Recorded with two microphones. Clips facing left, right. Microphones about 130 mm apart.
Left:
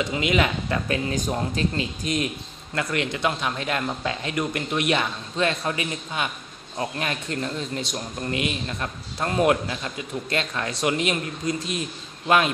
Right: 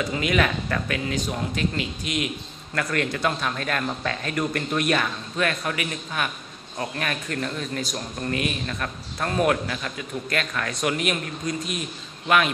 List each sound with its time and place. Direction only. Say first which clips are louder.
0.0 s a man's voice: even; 20° left (ahead or behind)
1.1 s speech: left 2 dB; 40° left (ahead or behind)
2.7 s a man's voice: even; 20° left (ahead or behind)